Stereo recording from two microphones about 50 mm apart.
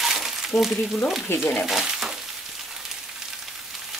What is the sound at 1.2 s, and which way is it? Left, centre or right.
Speech, left.